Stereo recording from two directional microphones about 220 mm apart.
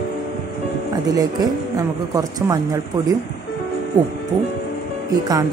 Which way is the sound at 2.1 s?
15° right (ahead or behind).